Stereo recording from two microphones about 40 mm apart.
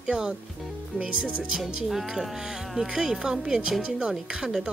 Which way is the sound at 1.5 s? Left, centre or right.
Centre.